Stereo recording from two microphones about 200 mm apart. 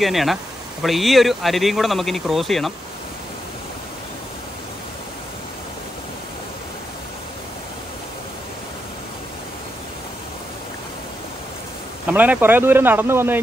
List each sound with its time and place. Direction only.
0.0 s speech: centre (ahead or behind)
12.1 s speech: 10° right (ahead or behind)